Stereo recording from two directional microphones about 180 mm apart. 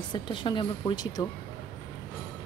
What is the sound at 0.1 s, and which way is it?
Speech, 25° left (ahead or behind).